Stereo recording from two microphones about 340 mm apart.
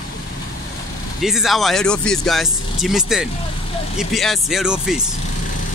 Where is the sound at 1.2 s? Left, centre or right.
Centre.